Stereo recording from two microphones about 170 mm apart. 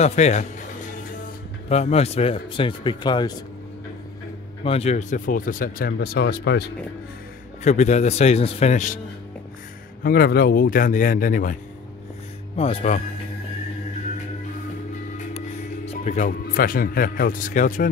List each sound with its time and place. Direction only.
0.0 s speech: 40° left (ahead or behind)
1.7 s speech: 40° left (ahead or behind)
4.6 s speech: 40° left (ahead or behind); by 6.7 s 75° left (ahead or behind)
7.6 s speech: 45° left (ahead or behind)
10.0 s speech: 65° left (ahead or behind)
12.5 s speech: 35° left (ahead or behind)
15.3 s speech: 35° left (ahead or behind)